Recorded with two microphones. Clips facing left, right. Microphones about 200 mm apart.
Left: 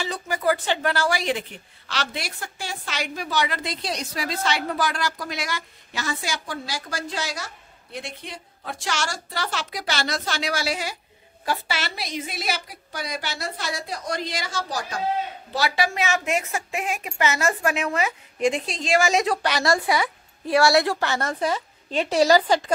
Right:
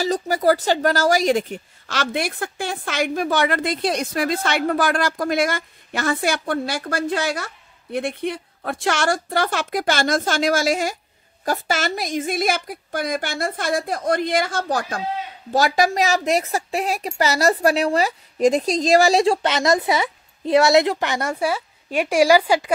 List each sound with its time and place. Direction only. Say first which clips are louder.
0.0 s speech: right 6 dB; 40° right (ahead or behind); by 15.0 s 55° right (ahead or behind)
15.5 s a woman's voice: right 6 dB; 45° right (ahead or behind); by 22.7 s 10° right (ahead or behind)